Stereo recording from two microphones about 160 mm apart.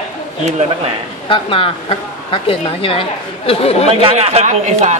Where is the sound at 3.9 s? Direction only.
35° right (ahead or behind).